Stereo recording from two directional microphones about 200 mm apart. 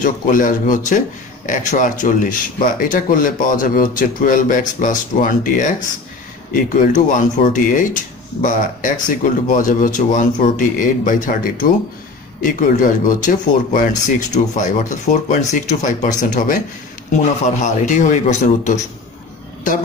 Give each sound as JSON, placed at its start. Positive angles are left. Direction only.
{"t": 0.0, "sound": "speech", "side_deg": 40}